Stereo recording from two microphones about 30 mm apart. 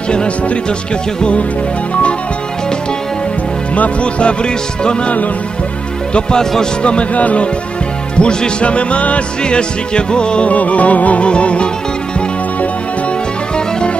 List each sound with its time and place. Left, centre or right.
4.0 s music: left
6.8 s music: left
7.2 s music: left
8.2 s music: left
8.6 s music: left
9.4 s music: left
10.5 s music: left
11.2 s music: left